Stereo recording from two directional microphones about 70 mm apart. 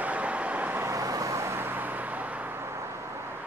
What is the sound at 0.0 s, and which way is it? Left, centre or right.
Vehicle, centre.